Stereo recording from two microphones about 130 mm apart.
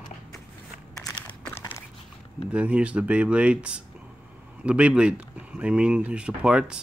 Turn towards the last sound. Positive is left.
turn(degrees=-5)  # may be behind; listen again after turning